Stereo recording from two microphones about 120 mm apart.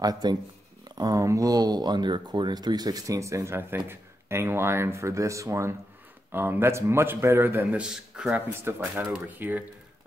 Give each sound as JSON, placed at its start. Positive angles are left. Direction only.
{"t": 0.0, "sound": "speech", "side_deg": -35}
{"t": 7.8, "sound": "speech", "side_deg": -5}
{"t": 8.5, "sound": "speech", "side_deg": -20}